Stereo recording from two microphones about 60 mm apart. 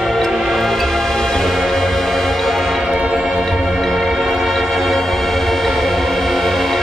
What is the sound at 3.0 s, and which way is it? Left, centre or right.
Music, centre.